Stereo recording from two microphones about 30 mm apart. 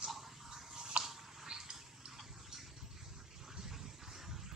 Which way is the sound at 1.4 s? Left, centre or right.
Right.